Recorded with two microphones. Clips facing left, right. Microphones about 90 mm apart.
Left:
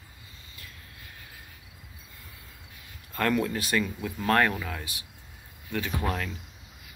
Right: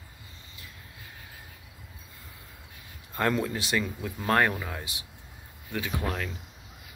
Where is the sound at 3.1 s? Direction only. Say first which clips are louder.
Left 1 dB; 20° right (ahead or behind).